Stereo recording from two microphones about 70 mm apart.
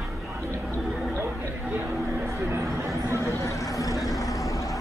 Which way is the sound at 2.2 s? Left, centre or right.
Right.